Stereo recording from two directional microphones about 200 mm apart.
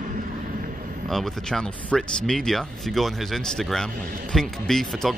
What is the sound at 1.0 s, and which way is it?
Speech, centre (ahead or behind).